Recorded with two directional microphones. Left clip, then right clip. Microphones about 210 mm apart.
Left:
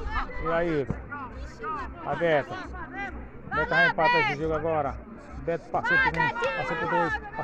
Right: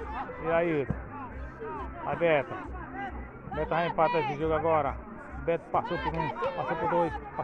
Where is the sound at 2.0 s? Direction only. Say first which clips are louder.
Left 1 dB; 60° left (ahead or behind).